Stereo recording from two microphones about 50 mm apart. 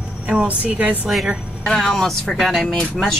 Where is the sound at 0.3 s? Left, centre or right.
Right.